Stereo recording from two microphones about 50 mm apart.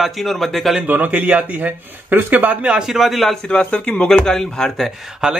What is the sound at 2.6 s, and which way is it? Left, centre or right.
Speech, centre.